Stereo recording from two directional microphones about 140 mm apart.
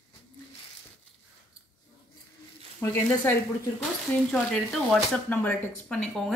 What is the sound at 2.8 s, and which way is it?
Speech, 15° left (ahead or behind).